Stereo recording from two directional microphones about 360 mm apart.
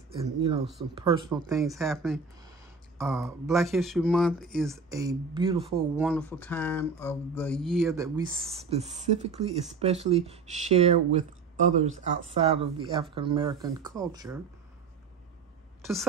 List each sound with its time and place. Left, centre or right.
0.7 s speech: centre
1.1 s speech: centre
1.6 s speech: centre
5.8 s speech: centre
15.8 s a woman's voice: centre